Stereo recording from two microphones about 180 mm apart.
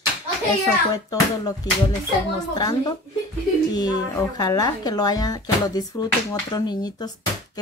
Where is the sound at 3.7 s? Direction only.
20° left (ahead or behind).